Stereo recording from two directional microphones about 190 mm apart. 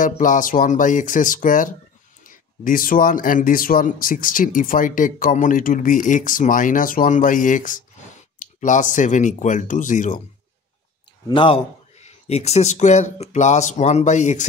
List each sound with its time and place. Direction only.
0.0 s speech: 45° left (ahead or behind)
11.2 s speech: 25° left (ahead or behind)